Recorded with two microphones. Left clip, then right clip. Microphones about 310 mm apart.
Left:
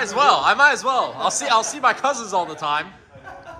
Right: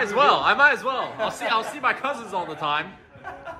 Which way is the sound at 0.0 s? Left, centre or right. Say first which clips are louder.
Left 2 dB; centre.